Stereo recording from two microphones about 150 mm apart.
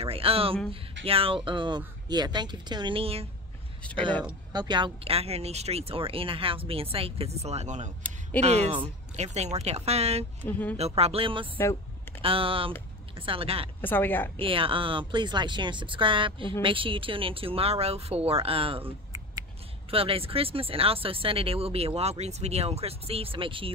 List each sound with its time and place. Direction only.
0.0 s speech: 40° right (ahead or behind)
3.8 s a woman's voice: 10° left (ahead or behind)
4.5 s speech: 30° right (ahead or behind); by 10.2 s 45° right (ahead or behind)
10.4 s a woman's voice: 10° left (ahead or behind)
10.8 s speech: 40° right (ahead or behind)
13.7 s a woman's voice: 15° left (ahead or behind)
14.3 s speech: 35° right (ahead or behind)